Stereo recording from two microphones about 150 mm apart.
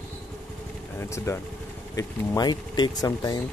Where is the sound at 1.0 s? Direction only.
20° left (ahead or behind).